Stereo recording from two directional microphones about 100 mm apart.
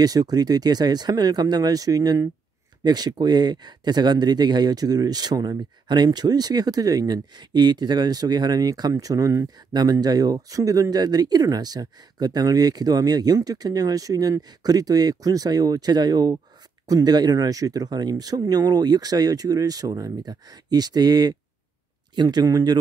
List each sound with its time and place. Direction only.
0.0 s speech: 40° right (ahead or behind)